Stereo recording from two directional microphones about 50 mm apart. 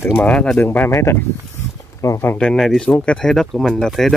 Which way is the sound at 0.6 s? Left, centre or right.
Left.